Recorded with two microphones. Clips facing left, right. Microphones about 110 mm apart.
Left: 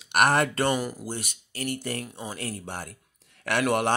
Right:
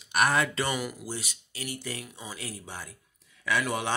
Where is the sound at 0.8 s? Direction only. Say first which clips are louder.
Left 3 dB; 40° left (ahead or behind).